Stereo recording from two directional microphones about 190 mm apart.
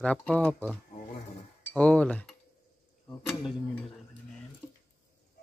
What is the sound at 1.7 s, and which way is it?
Speech, 5° left (ahead or behind).